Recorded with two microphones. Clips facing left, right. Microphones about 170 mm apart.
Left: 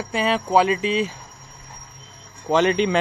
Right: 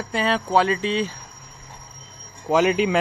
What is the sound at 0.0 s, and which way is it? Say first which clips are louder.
Speech: left 1 dB; 5° left (ahead or behind).